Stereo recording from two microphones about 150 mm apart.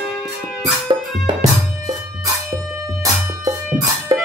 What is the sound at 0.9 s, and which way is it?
Music, 30° right (ahead or behind).